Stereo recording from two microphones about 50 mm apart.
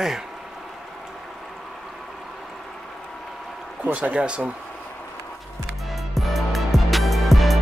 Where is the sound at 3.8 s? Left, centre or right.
Right.